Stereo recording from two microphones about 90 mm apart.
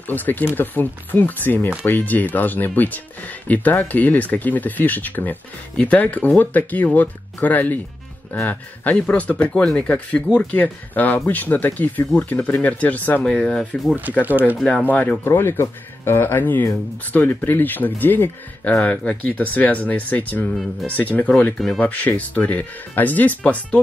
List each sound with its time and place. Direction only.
0.1 s speech: 20° left (ahead or behind)
14.8 s speech: 15° left (ahead or behind)